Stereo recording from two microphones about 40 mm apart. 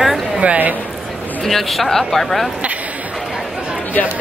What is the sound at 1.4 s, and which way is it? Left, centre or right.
Speech, centre.